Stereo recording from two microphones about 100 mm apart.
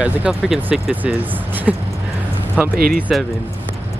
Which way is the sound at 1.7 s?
10° right (ahead or behind).